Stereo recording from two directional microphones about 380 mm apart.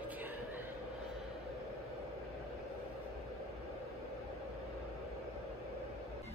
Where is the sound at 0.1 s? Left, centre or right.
Centre.